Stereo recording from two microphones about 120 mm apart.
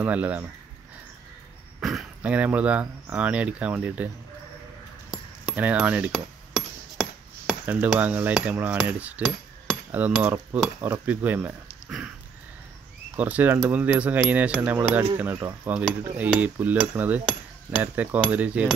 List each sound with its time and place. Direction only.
0.0 s cutlery: 10° right (ahead or behind)
1.8 s speech: 5° right (ahead or behind)
5.1 s a sound: 5° right (ahead or behind)
8.0 s cutlery: 15° right (ahead or behind)
13.1 s speech: 15° right (ahead or behind)
13.7 s cutlery: 10° right (ahead or behind)